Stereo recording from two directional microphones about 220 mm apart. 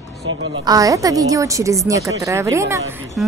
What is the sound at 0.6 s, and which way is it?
A woman's voice, 15° right (ahead or behind).